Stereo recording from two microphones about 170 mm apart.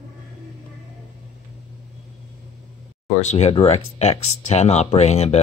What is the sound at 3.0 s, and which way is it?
Speech, 40° left (ahead or behind).